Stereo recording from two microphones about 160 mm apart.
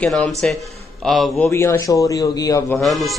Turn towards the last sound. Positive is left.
turn(degrees=0)  # may be behind; listen again after turning